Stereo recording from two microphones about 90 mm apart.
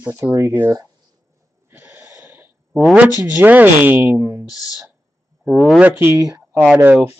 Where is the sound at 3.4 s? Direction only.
20° right (ahead or behind).